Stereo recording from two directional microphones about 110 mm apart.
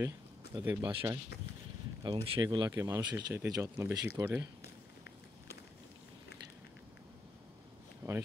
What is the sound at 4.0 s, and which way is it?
Speech, 20° right (ahead or behind).